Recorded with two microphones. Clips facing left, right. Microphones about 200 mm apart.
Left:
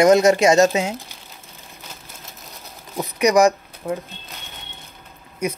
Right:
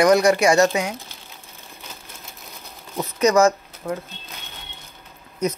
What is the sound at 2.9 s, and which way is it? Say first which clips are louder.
Speech: left 1 dB; 15° left (ahead or behind).